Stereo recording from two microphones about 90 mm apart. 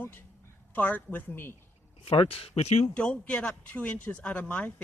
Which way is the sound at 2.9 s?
15° left (ahead or behind).